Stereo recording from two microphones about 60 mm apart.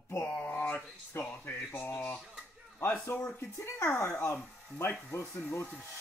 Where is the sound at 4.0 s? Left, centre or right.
Left.